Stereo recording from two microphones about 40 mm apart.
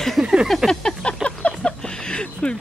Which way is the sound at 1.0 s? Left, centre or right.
Left.